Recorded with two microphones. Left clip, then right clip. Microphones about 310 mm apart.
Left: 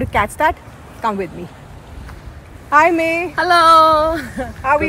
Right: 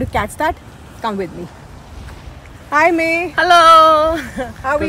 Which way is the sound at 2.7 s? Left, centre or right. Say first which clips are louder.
Left 1 dB; centre.